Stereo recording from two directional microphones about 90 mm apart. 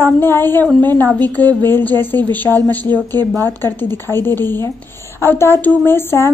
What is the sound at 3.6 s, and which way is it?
A woman's voice, 25° left (ahead or behind).